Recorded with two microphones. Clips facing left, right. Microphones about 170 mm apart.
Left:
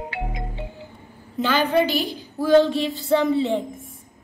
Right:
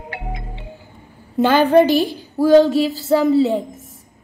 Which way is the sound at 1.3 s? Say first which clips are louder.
Right 7 dB; 50° right (ahead or behind).